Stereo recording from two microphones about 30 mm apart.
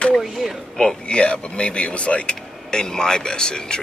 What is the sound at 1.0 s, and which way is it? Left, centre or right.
Speech, left.